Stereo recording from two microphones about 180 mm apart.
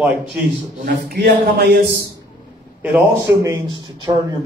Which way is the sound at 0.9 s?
60° right (ahead or behind).